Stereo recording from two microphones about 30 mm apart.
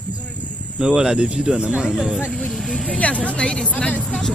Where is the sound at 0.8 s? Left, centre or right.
Right.